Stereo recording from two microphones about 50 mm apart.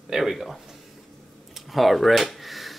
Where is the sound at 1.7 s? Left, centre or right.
Centre.